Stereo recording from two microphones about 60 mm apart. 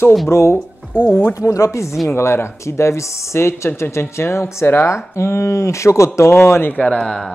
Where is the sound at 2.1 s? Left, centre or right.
Left.